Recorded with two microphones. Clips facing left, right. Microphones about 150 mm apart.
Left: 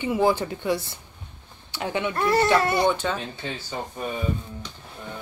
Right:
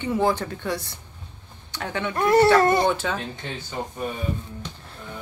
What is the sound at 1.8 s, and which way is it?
Speech, 15° left (ahead or behind).